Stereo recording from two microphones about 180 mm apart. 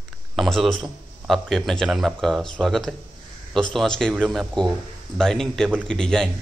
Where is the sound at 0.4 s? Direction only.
Centre (ahead or behind).